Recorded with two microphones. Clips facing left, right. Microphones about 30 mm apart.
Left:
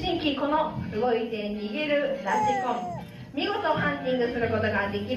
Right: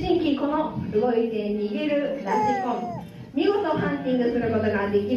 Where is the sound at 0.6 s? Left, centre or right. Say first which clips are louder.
Right 2 dB; centre.